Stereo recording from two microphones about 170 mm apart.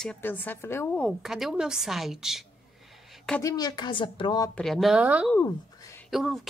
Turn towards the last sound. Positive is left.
turn(degrees=0)  # may be behind; listen again after turning